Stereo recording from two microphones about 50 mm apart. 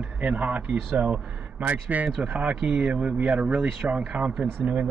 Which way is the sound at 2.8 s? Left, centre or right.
Right.